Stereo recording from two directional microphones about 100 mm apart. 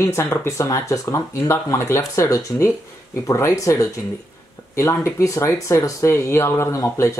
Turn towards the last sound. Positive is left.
turn(degrees=30)  # may be behind; listen again after turning